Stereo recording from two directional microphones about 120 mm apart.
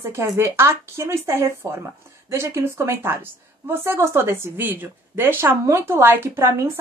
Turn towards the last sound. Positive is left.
turn(degrees=-20)  # may be behind; listen again after turning